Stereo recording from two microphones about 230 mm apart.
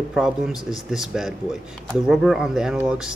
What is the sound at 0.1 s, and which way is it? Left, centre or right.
Speech, centre.